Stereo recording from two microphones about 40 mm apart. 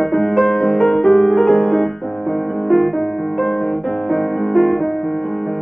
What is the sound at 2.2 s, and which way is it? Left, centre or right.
Music, centre.